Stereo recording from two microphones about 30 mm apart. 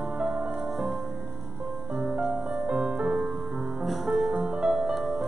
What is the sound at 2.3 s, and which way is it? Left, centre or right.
Music, right.